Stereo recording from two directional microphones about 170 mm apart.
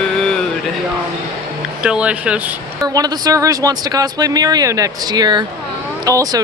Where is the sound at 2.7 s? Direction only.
20° right (ahead or behind).